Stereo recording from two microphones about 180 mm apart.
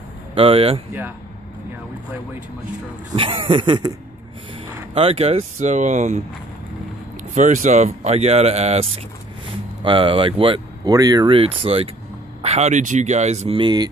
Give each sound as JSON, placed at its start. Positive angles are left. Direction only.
{"t": 0.3, "sound": "speech", "side_deg": -30}
{"t": 3.2, "sound": "speech", "side_deg": -30}
{"t": 4.9, "sound": "speech", "side_deg": -35}
{"t": 7.3, "sound": "speech", "side_deg": -45}